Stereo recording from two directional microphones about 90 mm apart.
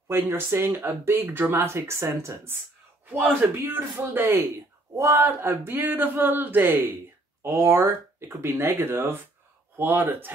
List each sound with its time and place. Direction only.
0.1 s speech: 30° right (ahead or behind)
3.4 s speech: 20° right (ahead or behind)
4.4 s speech: 40° right (ahead or behind); by 10.3 s 20° right (ahead or behind)